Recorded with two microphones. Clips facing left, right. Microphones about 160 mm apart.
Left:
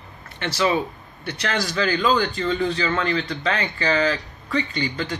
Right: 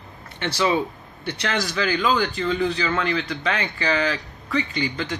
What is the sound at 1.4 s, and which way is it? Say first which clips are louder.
A man's voice: left 1 dB; 10° right (ahead or behind).